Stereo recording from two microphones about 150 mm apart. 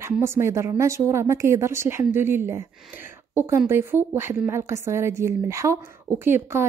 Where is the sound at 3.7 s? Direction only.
15° right (ahead or behind).